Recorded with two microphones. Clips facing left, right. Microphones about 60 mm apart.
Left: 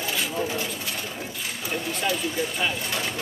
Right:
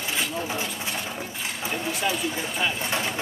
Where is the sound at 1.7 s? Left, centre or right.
Centre.